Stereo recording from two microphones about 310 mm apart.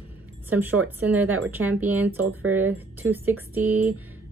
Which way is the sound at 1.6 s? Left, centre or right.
Right.